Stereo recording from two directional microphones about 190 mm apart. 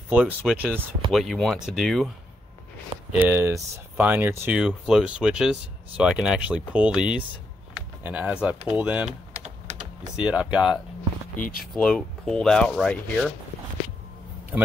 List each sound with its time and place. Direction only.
0.1 s speech: 5° right (ahead or behind)
3.2 s speech: 10° right (ahead or behind)
9.3 s typing: 35° right (ahead or behind)
10.1 s speech: 5° right (ahead or behind)
11.3 s speech: 45° left (ahead or behind)
11.7 s speech: 5° left (ahead or behind)
14.5 s speech: 10° right (ahead or behind)